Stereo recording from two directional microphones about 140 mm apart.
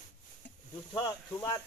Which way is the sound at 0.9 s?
30° left (ahead or behind).